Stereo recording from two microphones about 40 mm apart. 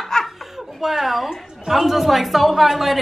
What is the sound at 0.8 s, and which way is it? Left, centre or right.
A woman's voice, centre.